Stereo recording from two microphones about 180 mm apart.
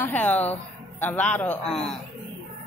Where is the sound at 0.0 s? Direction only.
10° left (ahead or behind).